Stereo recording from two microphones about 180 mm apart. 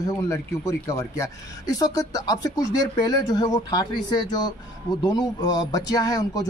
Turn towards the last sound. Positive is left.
turn(degrees=20)  # may be behind; listen again after turning